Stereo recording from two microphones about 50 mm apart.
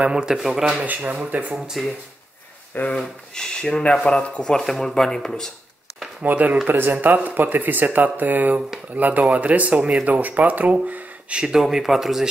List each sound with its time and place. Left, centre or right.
0.0 s speech: centre
0.4 s speech: centre
2.9 s speech: centre
3.8 s speech: left
4.6 s speech: centre
6.2 s speech: right
9.8 s speech: centre
10.0 s speech: right
11.3 s speech: centre